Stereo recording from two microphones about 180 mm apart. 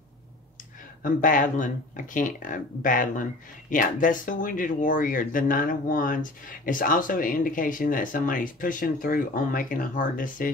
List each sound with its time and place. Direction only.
1.0 s speech: 50° left (ahead or behind)